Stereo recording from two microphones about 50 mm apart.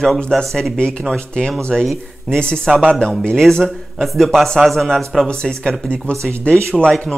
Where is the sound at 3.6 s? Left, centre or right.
Centre.